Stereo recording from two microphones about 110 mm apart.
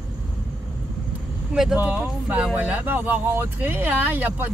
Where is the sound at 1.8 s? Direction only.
15° right (ahead or behind).